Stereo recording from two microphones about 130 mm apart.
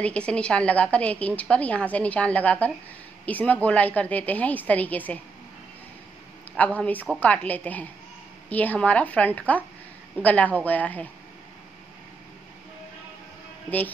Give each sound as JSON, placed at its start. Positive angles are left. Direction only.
{"t": 0.0, "sound": "a woman's voice", "side_deg": 10}
{"t": 6.5, "sound": "a woman's voice", "side_deg": 10}